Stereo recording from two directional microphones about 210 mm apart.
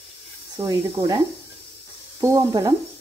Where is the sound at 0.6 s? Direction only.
15° right (ahead or behind).